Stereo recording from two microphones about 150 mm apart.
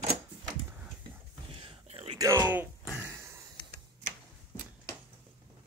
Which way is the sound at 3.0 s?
15° right (ahead or behind).